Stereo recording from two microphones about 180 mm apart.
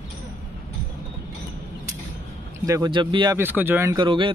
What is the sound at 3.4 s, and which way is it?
Speech, 10° right (ahead or behind).